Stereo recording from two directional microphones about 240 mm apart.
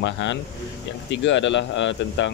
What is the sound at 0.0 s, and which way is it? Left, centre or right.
Speech, left.